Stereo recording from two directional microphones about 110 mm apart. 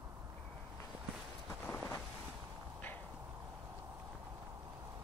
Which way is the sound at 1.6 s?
15° left (ahead or behind).